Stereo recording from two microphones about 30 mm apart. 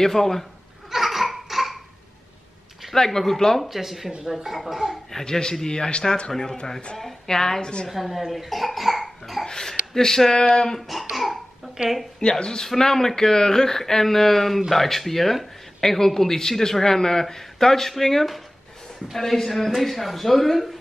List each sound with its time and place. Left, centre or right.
0.0 s speech: centre
0.8 s laughter: centre
2.9 s speech: centre
3.6 s speech: centre
5.1 s a man's voice: left
7.9 s cough: centre
9.4 s a sound: centre
9.9 s speech: centre
11.1 s cough: centre
12.2 s a man's voice: left
12.6 s speech: centre